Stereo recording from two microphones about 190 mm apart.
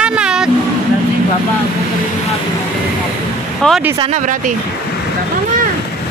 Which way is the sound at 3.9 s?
35° right (ahead or behind).